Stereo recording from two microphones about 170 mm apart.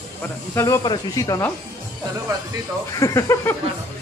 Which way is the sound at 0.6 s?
20° left (ahead or behind).